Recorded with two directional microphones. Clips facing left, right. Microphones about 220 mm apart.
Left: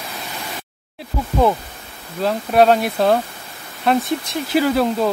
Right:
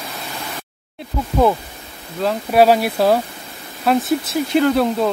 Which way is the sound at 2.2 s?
5° right (ahead or behind).